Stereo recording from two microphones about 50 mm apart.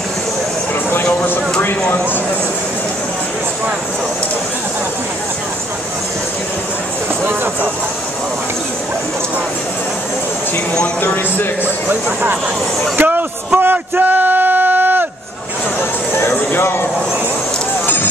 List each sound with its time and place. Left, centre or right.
11.9 s speech: right
12.9 s a sound: right
16.2 s music: left